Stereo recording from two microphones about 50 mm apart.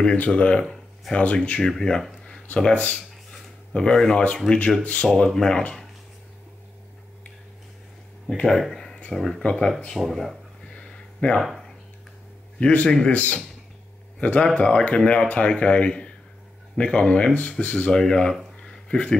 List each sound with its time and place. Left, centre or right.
0.0 s speech: left
1.8 s speech: centre
2.6 s speech: left
3.7 s speech: centre
5.0 s speech: centre
8.5 s a sound: centre
9.1 s speech: centre
9.4 s speech: left
9.8 s speech: centre
10.8 s a sound: left
11.3 s speech: centre
12.5 s a man's voice: left
18.6 s a sound: left